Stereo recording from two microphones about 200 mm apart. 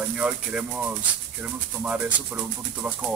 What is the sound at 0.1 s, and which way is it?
Speech, 5° right (ahead or behind).